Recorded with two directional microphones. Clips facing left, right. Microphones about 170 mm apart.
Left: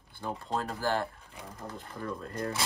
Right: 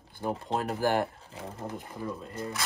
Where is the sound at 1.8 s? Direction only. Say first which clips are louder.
Right 1 dB; 10° right (ahead or behind).